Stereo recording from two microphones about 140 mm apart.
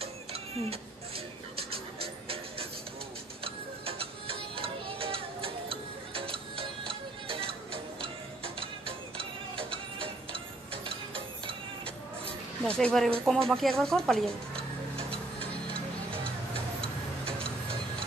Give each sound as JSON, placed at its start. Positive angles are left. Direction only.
{"t": 0.0, "sound": "cat", "side_deg": -45}
{"t": 1.6, "sound": "music", "side_deg": -45}
{"t": 3.4, "sound": "tick-tock", "side_deg": -40}
{"t": 9.6, "sound": "music", "side_deg": -40}
{"t": 12.7, "sound": "speech", "side_deg": 5}
{"t": 16.8, "sound": "tick-tock", "side_deg": 5}